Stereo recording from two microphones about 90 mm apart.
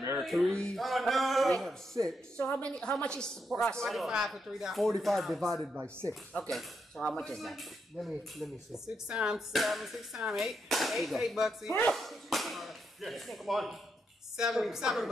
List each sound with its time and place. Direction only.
0.2 s speech: centre (ahead or behind)
6.3 s speech: 15° left (ahead or behind); by 15.0 s 5° right (ahead or behind)